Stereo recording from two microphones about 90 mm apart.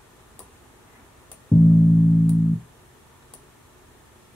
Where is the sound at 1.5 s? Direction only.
20° left (ahead or behind).